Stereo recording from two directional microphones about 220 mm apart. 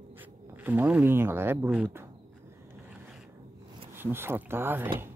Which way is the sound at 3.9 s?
10° right (ahead or behind).